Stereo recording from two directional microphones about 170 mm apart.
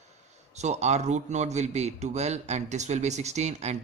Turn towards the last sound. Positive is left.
turn(degrees=-40)  # may be behind; listen again after turning